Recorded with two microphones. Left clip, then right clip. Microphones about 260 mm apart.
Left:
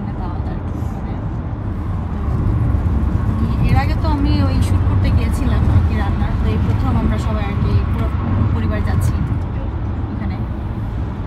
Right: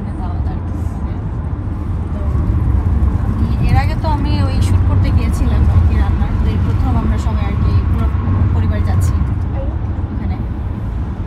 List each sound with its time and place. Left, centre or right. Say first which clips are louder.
3.6 s vehicle: right 2 dB; right